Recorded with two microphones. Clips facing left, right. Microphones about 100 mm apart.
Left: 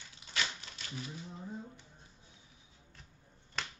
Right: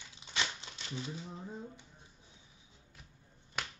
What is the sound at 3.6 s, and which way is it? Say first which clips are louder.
Finger snapping: right 1 dB; 15° right (ahead or behind).